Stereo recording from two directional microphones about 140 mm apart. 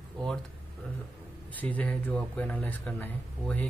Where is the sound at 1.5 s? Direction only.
10° left (ahead or behind).